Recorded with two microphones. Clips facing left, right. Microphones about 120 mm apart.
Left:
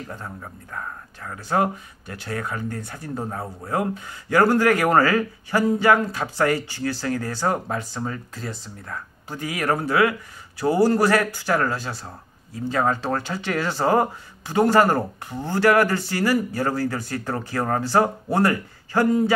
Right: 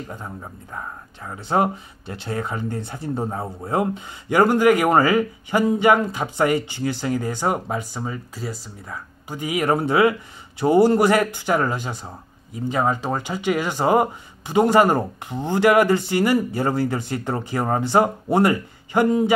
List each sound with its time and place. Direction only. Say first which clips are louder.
0.1 s speech: right 1 dB; 15° right (ahead or behind)